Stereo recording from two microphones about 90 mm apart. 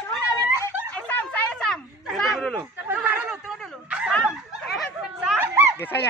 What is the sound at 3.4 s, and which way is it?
Bow-wow, 10° right (ahead or behind).